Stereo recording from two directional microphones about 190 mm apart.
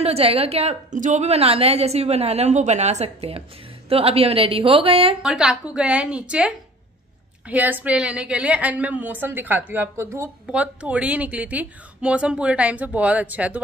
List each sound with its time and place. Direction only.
0.0 s a woman's voice: 30° right (ahead or behind)
5.2 s a woman's voice: centre (ahead or behind)